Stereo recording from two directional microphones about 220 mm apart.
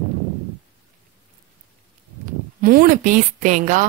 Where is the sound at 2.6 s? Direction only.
40° right (ahead or behind).